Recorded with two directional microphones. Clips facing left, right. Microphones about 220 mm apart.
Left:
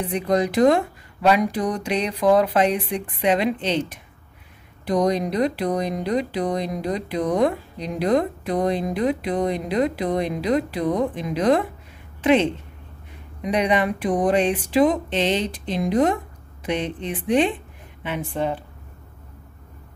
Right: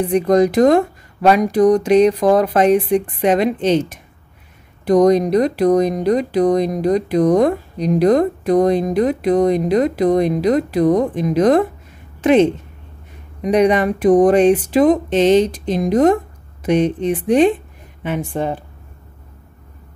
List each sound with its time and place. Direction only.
0.1 s a woman's voice: 45° right (ahead or behind)